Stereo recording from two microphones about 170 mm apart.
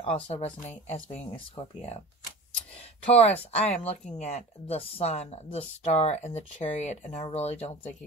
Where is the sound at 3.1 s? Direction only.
40° left (ahead or behind).